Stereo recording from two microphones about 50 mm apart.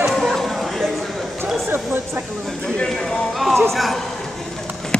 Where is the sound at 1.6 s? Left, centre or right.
Right.